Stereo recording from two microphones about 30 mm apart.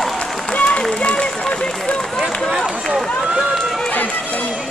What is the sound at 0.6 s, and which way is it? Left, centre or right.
Run, left.